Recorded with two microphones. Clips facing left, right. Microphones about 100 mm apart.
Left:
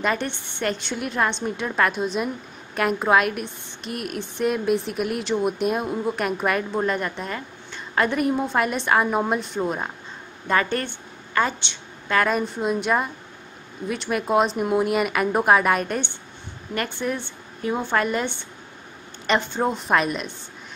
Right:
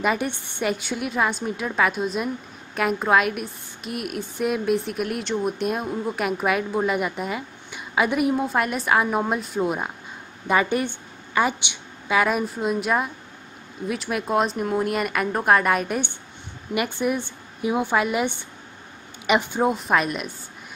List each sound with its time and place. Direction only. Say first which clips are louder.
0.0 s a woman's voice: right 1 dB; 10° right (ahead or behind)